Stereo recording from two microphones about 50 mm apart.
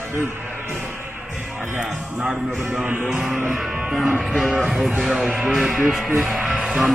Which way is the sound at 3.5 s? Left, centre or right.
Centre.